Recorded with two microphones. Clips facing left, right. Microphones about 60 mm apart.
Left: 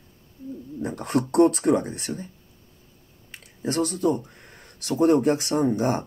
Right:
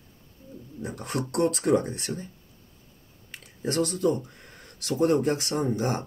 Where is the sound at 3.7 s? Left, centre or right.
Left.